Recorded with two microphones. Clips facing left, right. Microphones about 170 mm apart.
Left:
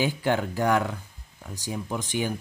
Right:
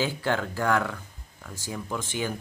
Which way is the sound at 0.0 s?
15° left (ahead or behind).